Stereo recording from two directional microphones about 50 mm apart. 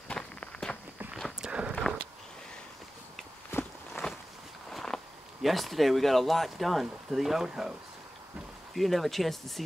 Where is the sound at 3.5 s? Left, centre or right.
Left.